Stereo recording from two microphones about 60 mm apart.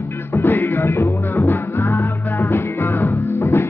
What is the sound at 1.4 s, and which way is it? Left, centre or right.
Music, left.